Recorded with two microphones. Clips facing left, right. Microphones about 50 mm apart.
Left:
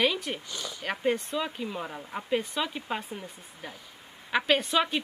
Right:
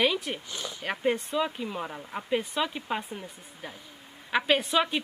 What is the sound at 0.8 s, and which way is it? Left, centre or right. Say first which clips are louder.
Speech: even; centre.